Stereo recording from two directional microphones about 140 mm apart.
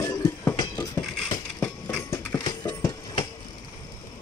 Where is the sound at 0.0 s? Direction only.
25° left (ahead or behind).